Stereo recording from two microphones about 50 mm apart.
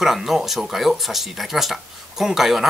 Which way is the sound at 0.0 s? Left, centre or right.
Centre.